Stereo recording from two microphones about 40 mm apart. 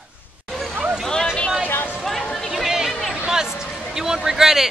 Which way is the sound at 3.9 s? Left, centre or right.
Centre.